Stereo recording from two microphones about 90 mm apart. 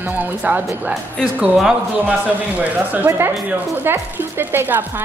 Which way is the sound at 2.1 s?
15° right (ahead or behind).